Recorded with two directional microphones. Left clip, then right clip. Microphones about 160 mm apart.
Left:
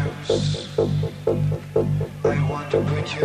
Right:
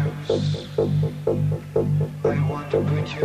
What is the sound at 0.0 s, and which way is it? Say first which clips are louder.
Music: left 1 dB; 30° right (ahead or behind).